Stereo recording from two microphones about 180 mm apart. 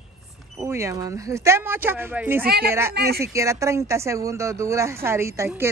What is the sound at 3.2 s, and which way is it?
Speech, 15° right (ahead or behind).